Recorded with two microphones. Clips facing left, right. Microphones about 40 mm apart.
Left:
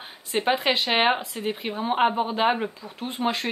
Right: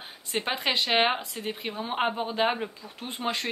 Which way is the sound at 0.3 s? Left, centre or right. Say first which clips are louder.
Left 5 dB; centre.